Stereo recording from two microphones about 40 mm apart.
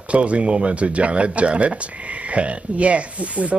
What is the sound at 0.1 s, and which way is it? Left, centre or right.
Speech, right.